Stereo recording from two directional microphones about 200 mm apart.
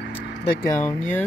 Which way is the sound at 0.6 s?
15° left (ahead or behind).